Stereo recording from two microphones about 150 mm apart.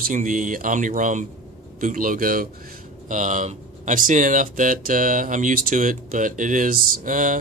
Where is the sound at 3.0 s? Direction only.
55° right (ahead or behind).